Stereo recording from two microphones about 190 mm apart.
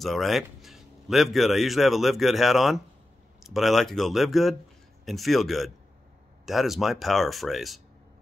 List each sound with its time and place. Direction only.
0.0 s a man's voice: centre (ahead or behind)